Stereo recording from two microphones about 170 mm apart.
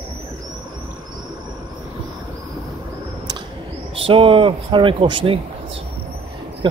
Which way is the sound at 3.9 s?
30° right (ahead or behind).